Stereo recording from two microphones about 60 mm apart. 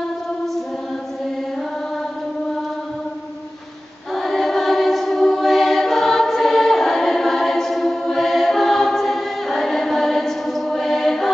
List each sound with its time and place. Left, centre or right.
4.1 s choir: centre